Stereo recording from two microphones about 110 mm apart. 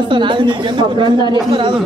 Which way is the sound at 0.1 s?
45° right (ahead or behind).